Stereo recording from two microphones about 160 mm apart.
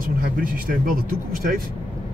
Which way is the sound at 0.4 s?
65° right (ahead or behind).